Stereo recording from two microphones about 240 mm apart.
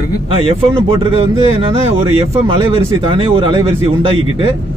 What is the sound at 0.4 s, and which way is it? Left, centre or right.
Speech, right.